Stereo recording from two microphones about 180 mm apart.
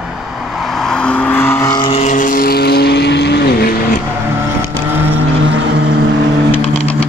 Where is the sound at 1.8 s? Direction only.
35° left (ahead or behind); by 3.9 s 60° left (ahead or behind).